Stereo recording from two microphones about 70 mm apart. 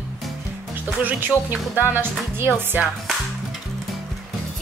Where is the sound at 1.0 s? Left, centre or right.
Right.